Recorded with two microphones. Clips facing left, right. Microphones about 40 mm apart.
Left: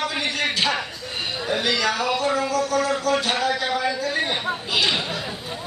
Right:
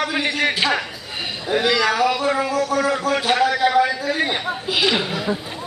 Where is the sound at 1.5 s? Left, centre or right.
Centre.